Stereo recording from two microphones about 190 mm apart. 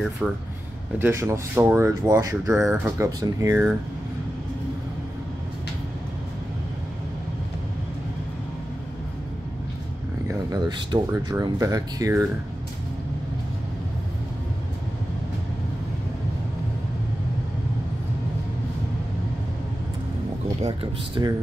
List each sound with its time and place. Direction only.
0.2 s speech: 5° right (ahead or behind)
2.5 s speech: 5° right (ahead or behind)
10.5 s speech: 20° right (ahead or behind)
21.2 s speech: 20° right (ahead or behind)